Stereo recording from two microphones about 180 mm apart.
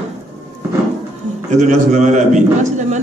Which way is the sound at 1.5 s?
40° right (ahead or behind).